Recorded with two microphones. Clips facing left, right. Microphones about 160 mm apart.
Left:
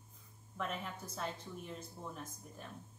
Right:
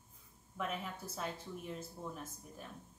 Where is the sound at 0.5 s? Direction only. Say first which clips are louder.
Right 1 dB; 5° right (ahead or behind).